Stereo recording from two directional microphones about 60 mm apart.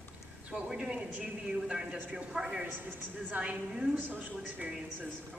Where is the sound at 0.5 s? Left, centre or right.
Centre.